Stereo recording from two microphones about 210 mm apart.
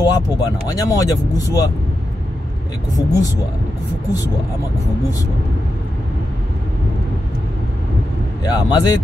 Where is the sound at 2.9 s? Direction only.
15° left (ahead or behind).